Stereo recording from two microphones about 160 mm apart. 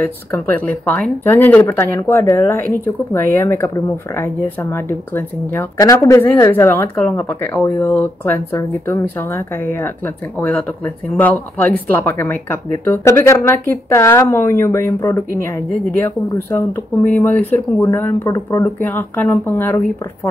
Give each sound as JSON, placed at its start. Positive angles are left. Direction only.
{"t": 0.0, "sound": "speech", "side_deg": 10}
{"t": 11.1, "sound": "speech", "side_deg": 10}